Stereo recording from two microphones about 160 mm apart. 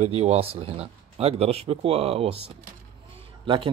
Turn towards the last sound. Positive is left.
turn(degrees=-30)  # may be behind; listen again after turning